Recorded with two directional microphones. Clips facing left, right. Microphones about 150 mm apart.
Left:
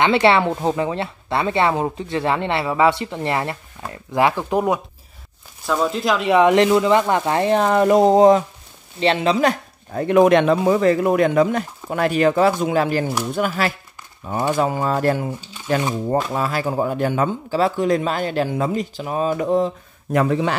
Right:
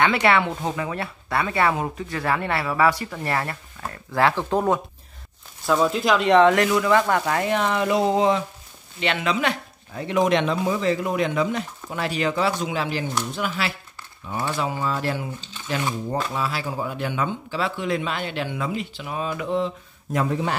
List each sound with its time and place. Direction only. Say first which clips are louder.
0.0 s speech: left 4 dB; 25° left (ahead or behind); by 4.8 s 10° left (ahead or behind)
5.7 s speech: even; centre (ahead or behind)
6.5 s speech: left 4 dB; 25° left (ahead or behind); by 15.2 s 45° left (ahead or behind)
16.3 s speech: left 6 dB; 50° left (ahead or behind)
20.1 s a man's voice: left 5 dB; 80° left